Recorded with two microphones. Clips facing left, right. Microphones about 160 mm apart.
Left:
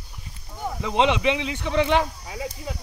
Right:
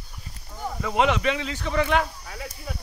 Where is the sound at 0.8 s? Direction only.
20° left (ahead or behind).